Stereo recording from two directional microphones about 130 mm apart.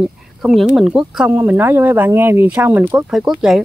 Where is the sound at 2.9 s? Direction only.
5° right (ahead or behind).